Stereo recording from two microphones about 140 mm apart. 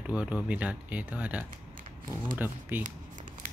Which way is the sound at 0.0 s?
10° right (ahead or behind).